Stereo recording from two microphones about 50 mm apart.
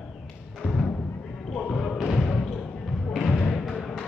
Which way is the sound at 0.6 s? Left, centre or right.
Centre.